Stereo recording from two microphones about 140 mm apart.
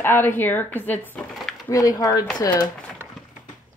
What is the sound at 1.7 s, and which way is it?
Speech, 25° left (ahead or behind).